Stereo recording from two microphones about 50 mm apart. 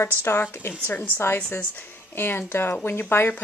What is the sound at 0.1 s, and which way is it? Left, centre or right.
A woman's voice, left.